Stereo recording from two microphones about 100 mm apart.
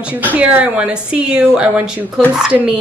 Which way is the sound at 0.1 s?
15° right (ahead or behind).